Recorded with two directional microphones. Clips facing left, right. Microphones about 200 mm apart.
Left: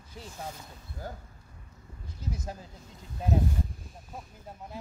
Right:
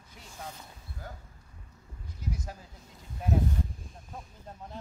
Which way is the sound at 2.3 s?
25° left (ahead or behind).